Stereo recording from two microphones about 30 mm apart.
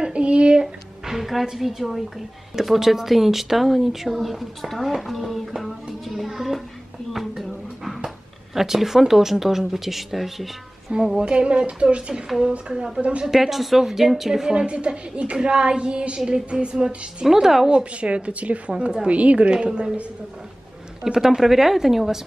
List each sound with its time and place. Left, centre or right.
0.1 s a sound: right
1.1 s a sound: centre
1.4 s speech: centre
8.5 s speech: centre
10.9 s a woman's voice: right
13.3 s speech: centre
14.5 s a woman's voice: right
16.5 s speech: right
17.6 s a woman's voice: right
18.7 s a woman's voice: right
19.0 s a woman's voice: right
21.0 s speech: centre